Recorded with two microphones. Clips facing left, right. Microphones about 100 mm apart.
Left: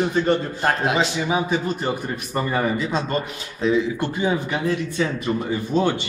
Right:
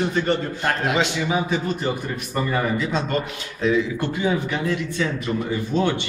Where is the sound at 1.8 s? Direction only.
30° left (ahead or behind).